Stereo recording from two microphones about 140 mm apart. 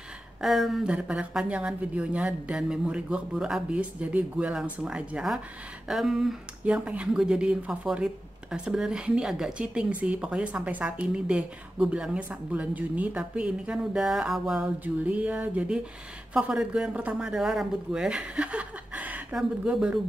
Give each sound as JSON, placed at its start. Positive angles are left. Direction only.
{"t": 0.4, "sound": "speech", "side_deg": 0}